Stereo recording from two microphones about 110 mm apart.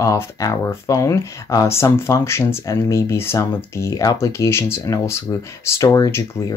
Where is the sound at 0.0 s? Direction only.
30° left (ahead or behind).